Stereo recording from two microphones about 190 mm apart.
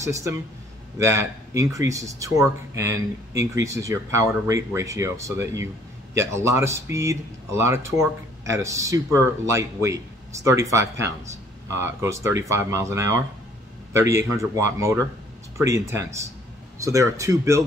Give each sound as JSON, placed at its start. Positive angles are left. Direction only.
{"t": 0.0, "sound": "speech", "side_deg": -15}